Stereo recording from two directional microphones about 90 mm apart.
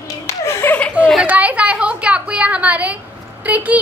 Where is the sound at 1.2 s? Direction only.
15° right (ahead or behind).